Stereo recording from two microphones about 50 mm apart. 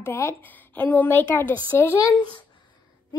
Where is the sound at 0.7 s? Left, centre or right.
Left.